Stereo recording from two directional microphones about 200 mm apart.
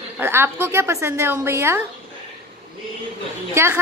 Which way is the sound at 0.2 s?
10° right (ahead or behind).